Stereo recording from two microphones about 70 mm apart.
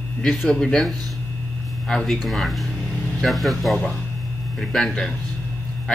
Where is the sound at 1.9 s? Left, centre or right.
Centre.